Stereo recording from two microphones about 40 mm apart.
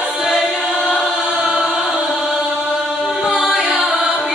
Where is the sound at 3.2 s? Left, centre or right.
Centre.